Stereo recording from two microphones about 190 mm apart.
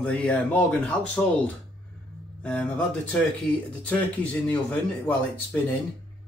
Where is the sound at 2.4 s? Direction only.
5° left (ahead or behind).